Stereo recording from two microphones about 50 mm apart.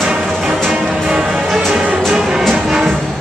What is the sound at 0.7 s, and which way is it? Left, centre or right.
Music, centre.